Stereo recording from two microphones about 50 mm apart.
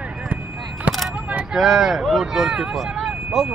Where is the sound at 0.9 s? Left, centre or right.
Right.